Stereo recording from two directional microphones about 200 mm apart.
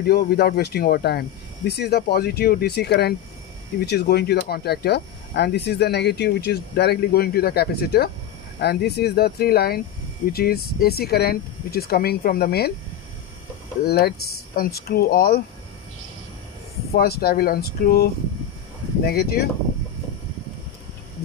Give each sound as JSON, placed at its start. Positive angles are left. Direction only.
{"t": 0.0, "sound": "speech", "side_deg": 50}
{"t": 13.8, "sound": "speech", "side_deg": 50}
{"t": 16.9, "sound": "speech", "side_deg": 50}